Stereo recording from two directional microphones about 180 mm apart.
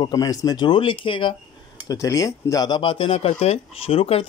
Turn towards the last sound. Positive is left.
turn(degrees=35)  # may be behind; listen again after turning